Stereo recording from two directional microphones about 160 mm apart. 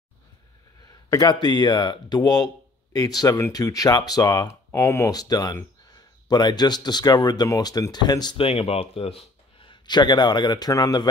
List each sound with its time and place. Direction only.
1.1 s speech: 25° left (ahead or behind)